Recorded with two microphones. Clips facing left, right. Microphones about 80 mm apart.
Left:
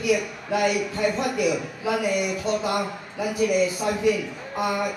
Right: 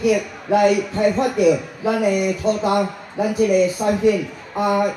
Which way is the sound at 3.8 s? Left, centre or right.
Right.